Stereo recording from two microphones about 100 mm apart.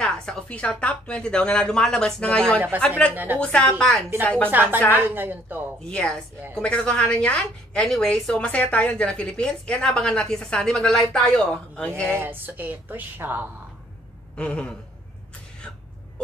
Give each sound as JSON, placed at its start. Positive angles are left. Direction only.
{"t": 0.0, "sound": "a woman's voice", "side_deg": 10}
{"t": 4.5, "sound": "a woman's voice", "side_deg": -20}
{"t": 5.9, "sound": "a woman's voice", "side_deg": 10}
{"t": 12.1, "sound": "a woman's voice", "side_deg": -20}
{"t": 14.3, "sound": "a woman's voice", "side_deg": 10}